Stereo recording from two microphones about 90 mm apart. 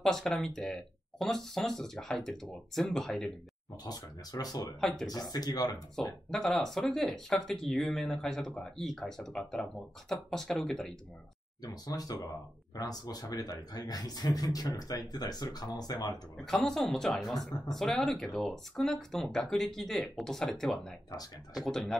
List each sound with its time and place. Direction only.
0.0 s speech: 5° left (ahead or behind)
3.8 s speech: 45° left (ahead or behind)
4.7 s speech: 5° left (ahead or behind)
5.0 s speech: 50° left (ahead or behind)
6.0 s speech: 5° left (ahead or behind)
11.6 s speech: 45° left (ahead or behind)
16.6 s speech: 5° left (ahead or behind)